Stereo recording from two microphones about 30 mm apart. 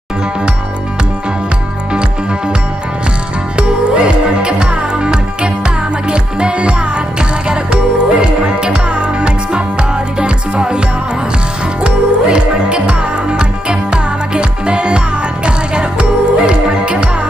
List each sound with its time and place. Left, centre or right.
3.5 s music: right
11.8 s music: right